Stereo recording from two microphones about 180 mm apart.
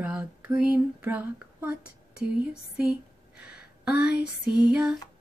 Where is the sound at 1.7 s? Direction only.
60° left (ahead or behind).